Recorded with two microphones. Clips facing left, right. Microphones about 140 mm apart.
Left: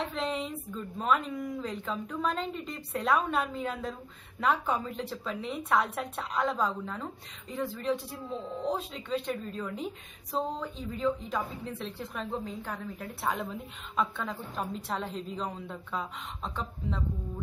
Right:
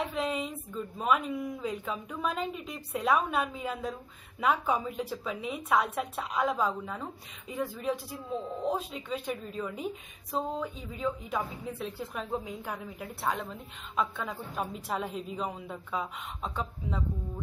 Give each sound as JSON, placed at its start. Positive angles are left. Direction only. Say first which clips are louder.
{"t": 0.0, "sound": "a woman's voice", "louder": "right 1 dB", "side_deg": -5}